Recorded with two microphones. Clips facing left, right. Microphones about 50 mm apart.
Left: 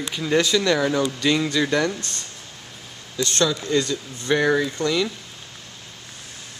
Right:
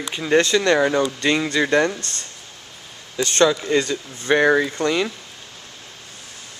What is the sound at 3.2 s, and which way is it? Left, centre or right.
Speech, right.